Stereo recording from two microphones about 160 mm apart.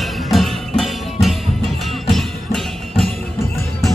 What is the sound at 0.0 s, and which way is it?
Music, centre (ahead or behind).